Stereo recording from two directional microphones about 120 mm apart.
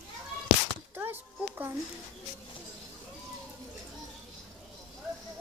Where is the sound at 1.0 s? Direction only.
15° right (ahead or behind).